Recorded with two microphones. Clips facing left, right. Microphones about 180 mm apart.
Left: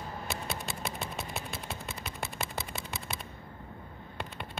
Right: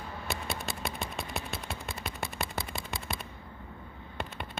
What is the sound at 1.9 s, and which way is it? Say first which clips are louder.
Gunshot: right 1 dB; 20° left (ahead or behind).